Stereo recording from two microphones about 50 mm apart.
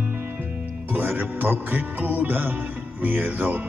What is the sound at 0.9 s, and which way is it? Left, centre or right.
Speech, right.